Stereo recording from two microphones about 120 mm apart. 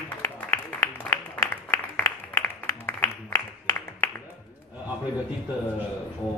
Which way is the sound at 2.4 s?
20° left (ahead or behind).